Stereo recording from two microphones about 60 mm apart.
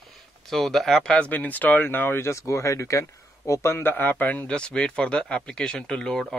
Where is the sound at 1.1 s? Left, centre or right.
Left.